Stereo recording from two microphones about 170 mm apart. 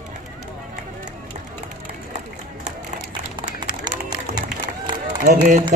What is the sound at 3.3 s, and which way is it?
Run, 25° right (ahead or behind).